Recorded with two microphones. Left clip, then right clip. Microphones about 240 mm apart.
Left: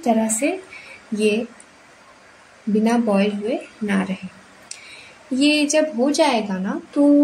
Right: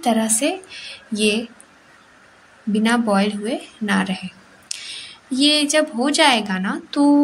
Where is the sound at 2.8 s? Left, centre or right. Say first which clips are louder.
Right 1 dB; right.